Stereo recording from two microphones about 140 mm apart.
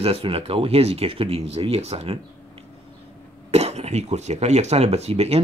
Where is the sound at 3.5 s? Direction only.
50° right (ahead or behind).